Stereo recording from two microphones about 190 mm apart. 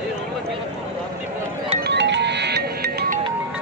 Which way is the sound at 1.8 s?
65° right (ahead or behind).